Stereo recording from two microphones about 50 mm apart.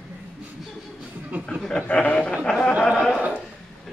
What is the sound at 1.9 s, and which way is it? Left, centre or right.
Speech, left.